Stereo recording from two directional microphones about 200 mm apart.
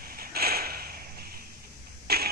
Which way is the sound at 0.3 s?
50° right (ahead or behind).